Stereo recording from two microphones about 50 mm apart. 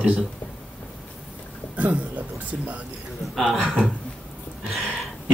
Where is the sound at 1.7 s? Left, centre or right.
Right.